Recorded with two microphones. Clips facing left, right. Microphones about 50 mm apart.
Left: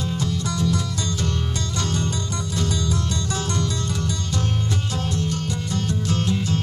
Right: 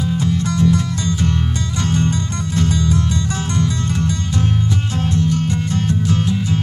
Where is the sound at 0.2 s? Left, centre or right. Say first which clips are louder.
Right 8 dB; right.